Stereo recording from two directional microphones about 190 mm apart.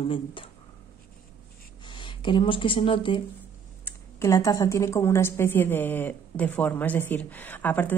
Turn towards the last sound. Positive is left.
turn(degrees=10)  # may be behind; listen again after turning